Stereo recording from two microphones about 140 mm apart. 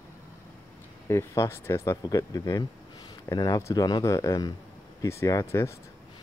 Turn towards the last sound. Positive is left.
turn(degrees=20)  # may be behind; listen again after turning